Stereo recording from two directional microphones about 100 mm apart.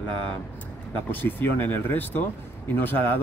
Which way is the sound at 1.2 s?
20° left (ahead or behind).